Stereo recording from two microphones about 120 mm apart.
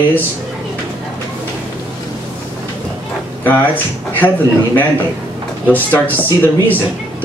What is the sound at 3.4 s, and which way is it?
Speech, 15° left (ahead or behind).